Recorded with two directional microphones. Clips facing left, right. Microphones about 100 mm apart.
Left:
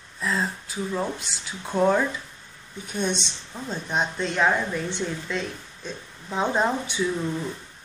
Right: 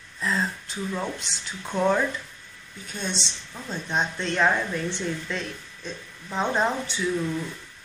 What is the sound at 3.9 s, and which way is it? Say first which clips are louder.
A woman's voice: even; 5° left (ahead or behind).